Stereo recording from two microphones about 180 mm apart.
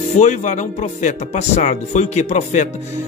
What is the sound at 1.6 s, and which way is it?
Speech, 40° left (ahead or behind).